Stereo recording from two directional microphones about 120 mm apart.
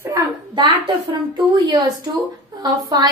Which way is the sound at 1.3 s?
35° right (ahead or behind).